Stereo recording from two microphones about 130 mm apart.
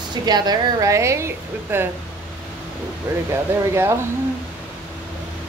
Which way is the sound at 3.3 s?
20° right (ahead or behind).